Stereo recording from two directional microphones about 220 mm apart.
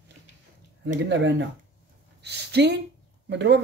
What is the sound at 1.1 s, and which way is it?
Speech, 55° right (ahead or behind).